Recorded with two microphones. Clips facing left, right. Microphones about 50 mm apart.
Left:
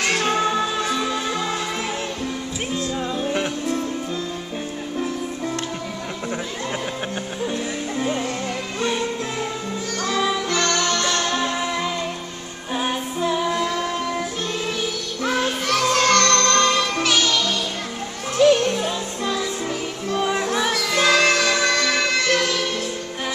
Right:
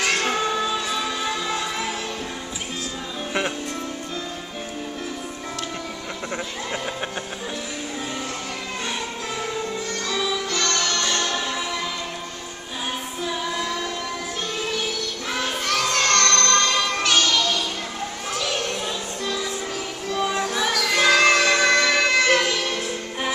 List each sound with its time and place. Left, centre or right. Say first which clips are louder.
10.5 s music: left 3 dB; left
15.2 s music: left 5 dB; centre
20.1 s music: left 2 dB; centre
20.8 s music: right 1 dB; centre
21.3 s music: right 1 dB; centre